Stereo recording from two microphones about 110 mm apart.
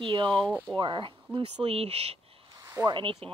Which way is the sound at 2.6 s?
30° right (ahead or behind).